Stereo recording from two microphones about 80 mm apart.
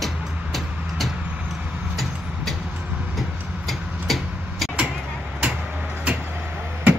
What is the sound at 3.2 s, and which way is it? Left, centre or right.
Vehicle, centre.